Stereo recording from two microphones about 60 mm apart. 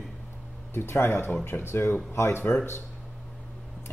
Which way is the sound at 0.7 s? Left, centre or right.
Left.